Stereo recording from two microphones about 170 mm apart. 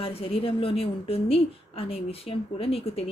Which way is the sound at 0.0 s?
35° left (ahead or behind).